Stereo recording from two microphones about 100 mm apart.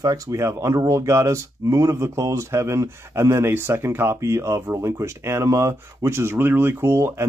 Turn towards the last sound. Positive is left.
turn(degrees=-25)  # may be behind; listen again after turning